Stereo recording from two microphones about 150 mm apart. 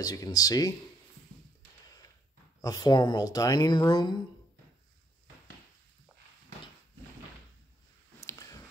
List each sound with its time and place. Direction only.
0.0 s speech: 25° left (ahead or behind)
2.6 s speech: 25° left (ahead or behind)
8.2 s a sound: 20° left (ahead or behind)